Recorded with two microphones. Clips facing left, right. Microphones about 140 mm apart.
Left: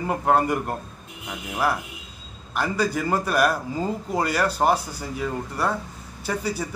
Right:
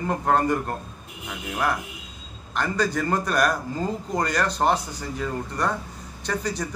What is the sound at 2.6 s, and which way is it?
A man's voice, 10° left (ahead or behind).